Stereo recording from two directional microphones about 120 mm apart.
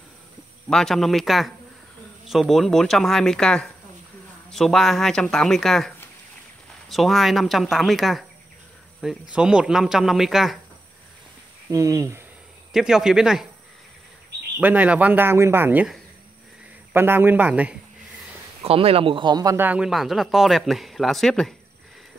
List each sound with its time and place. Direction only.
0.7 s speech: 5° left (ahead or behind)
9.3 s speech: 10° right (ahead or behind)
11.7 s speech: 30° right (ahead or behind)
12.7 s speech: 5° right (ahead or behind)
14.6 s speech: 15° right (ahead or behind)
16.9 s speech: 20° right (ahead or behind)
18.6 s speech: 55° right (ahead or behind); by 19.5 s 35° right (ahead or behind)
19.5 s speech: 15° right (ahead or behind)
19.9 s speech: centre (ahead or behind)